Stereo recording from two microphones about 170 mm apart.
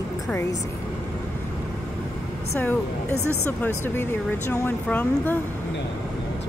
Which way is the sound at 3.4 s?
10° left (ahead or behind).